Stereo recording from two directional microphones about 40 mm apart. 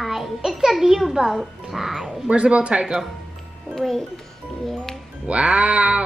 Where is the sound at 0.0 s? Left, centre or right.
Centre.